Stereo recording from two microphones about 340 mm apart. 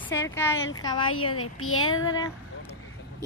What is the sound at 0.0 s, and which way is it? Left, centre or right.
Speech, centre.